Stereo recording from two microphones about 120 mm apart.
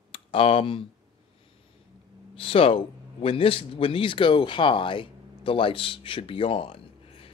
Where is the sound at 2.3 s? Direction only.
50° left (ahead or behind).